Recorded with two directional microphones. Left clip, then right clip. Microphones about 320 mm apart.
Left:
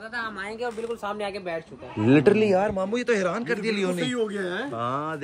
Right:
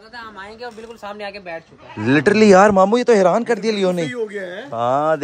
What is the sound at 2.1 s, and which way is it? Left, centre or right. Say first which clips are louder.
Speech: right 3 dB; centre.